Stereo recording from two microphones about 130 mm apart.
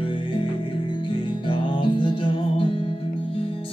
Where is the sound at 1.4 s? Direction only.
40° left (ahead or behind).